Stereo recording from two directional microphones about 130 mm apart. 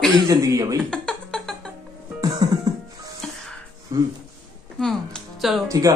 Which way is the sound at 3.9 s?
25° right (ahead or behind).